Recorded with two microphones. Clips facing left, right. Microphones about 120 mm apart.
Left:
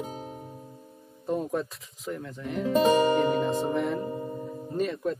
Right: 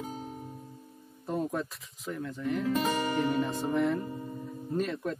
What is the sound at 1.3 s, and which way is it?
Speech, centre (ahead or behind).